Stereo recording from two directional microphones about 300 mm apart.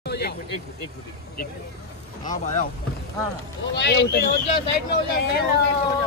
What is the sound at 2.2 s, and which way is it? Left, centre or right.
Speech, left.